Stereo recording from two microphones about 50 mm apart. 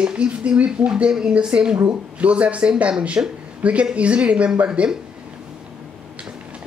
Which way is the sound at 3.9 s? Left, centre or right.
Right.